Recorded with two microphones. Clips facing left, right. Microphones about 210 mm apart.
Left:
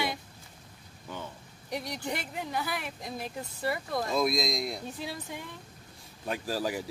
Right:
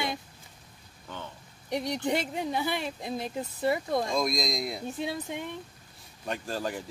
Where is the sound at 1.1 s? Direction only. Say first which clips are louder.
Left 1 dB; 10° left (ahead or behind).